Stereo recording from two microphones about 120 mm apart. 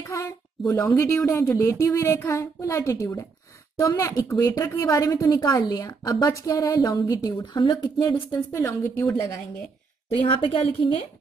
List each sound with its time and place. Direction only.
0.1 s a woman's voice: 25° left (ahead or behind)
8.4 s a woman's voice: 20° left (ahead or behind)
10.2 s a woman's voice: 45° left (ahead or behind)